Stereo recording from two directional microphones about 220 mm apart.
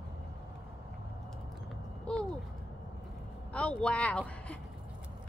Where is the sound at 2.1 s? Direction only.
5° left (ahead or behind).